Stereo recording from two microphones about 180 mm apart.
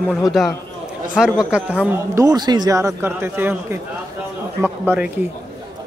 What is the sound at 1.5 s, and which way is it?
A man's voice, 5° right (ahead or behind).